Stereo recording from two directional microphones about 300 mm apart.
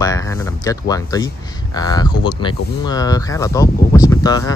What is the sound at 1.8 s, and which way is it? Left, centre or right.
Speech, centre.